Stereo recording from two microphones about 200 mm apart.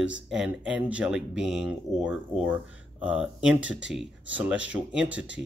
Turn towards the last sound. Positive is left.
turn(degrees=-5)  # may be behind; listen again after turning